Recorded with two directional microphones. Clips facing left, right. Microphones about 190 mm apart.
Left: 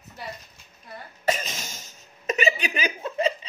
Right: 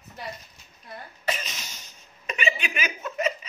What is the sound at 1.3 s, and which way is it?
Cough, 45° left (ahead or behind).